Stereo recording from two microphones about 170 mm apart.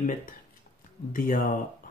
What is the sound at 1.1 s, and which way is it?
Speech, 50° left (ahead or behind).